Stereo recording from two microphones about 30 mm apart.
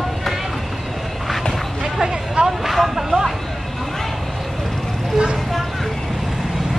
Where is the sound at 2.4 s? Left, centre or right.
Right.